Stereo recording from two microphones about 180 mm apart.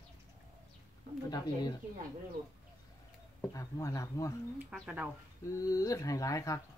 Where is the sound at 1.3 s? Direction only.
20° left (ahead or behind).